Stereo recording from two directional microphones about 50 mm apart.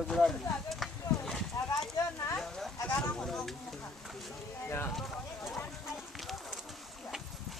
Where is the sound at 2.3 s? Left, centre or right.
Centre.